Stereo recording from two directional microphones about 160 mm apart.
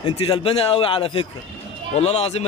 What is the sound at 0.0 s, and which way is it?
A man's voice, 35° left (ahead or behind).